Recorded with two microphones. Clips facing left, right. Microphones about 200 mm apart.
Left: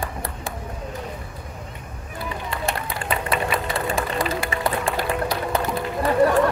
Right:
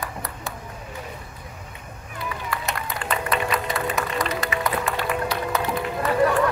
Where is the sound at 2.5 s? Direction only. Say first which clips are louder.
Left 3 dB; 30° left (ahead or behind).